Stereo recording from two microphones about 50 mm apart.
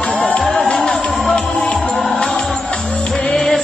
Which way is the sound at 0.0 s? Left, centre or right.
Left.